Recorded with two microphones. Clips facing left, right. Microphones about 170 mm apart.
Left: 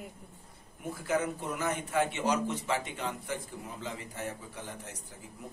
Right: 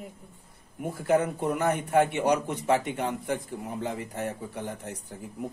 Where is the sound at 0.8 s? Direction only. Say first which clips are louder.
Right 7 dB; 60° right (ahead or behind).